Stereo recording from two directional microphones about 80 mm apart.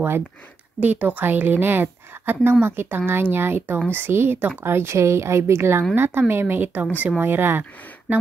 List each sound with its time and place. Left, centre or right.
0.7 s a woman's voice: centre